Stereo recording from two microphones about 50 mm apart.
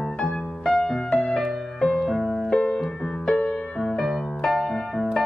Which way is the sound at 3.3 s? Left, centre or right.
Centre.